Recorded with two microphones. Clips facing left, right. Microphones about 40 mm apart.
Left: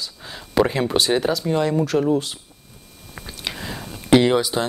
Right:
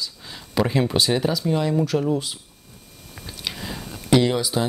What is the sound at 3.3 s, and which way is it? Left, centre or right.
Whispering, centre.